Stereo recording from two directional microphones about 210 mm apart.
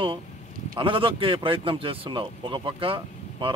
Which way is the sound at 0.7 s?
25° right (ahead or behind).